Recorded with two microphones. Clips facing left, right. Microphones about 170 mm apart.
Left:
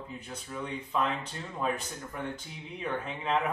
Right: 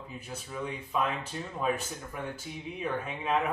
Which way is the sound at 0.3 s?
5° right (ahead or behind).